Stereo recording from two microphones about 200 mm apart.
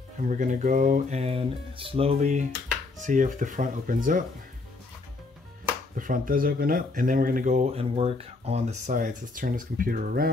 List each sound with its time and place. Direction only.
0.2 s speech: 40° right (ahead or behind)
5.9 s speech: 40° right (ahead or behind)